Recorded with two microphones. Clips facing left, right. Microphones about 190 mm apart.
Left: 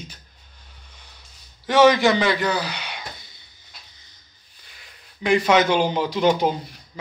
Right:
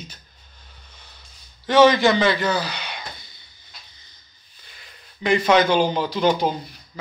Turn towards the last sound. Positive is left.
turn(degrees=20)  # may be behind; listen again after turning